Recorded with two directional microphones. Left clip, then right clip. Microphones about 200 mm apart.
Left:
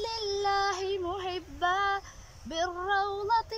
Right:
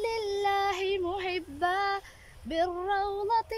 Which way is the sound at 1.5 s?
25° right (ahead or behind).